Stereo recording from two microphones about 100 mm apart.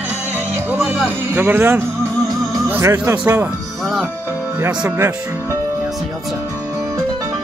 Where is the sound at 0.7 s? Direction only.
5° right (ahead or behind).